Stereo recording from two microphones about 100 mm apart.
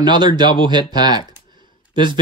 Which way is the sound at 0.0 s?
45° right (ahead or behind).